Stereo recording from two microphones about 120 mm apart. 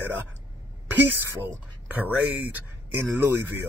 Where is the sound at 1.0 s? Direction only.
15° right (ahead or behind).